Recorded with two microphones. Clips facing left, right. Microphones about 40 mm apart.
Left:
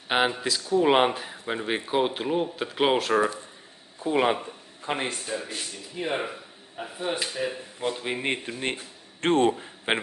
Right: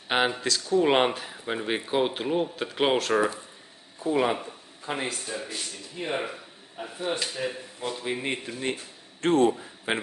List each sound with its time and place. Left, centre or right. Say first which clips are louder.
0.1 s speech: left 1 dB; centre
4.0 s speech: left 1 dB; left
5.9 s speech: left 1 dB; centre
7.8 s a man's voice: left 2 dB; left